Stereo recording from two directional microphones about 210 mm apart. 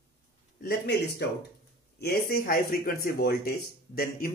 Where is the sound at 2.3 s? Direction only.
45° left (ahead or behind).